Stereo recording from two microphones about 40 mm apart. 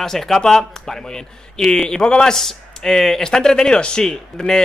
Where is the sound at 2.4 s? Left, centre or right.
Centre.